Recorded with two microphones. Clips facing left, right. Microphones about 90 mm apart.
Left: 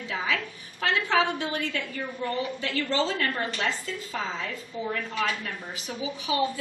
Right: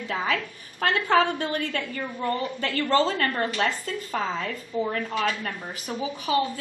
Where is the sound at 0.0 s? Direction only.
45° right (ahead or behind).